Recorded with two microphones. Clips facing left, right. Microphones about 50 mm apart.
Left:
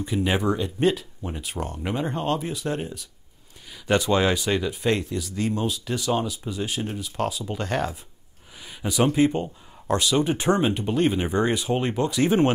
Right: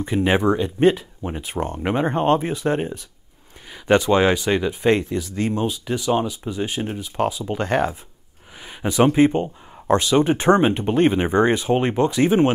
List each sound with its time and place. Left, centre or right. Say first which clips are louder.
0.0 s speech: right 5 dB; right
12.3 s speech: right 1 dB; centre